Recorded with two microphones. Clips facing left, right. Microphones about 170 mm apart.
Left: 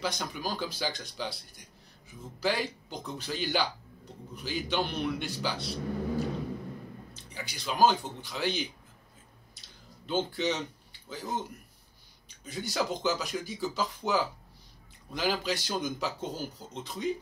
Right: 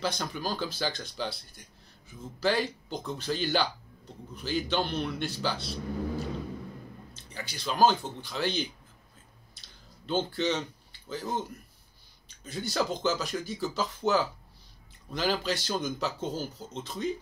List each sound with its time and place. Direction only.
0.0 s speech: 10° left (ahead or behind)
2.4 s speech: 15° left (ahead or behind)
7.4 s speech: 15° left (ahead or behind)
10.0 s speech: 15° left (ahead or behind)
12.4 s speech: 15° left (ahead or behind)